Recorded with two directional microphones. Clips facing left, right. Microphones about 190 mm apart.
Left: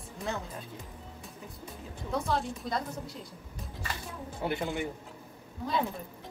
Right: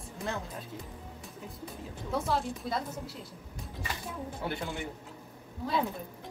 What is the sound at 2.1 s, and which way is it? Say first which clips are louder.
Speech: even; 5° right (ahead or behind).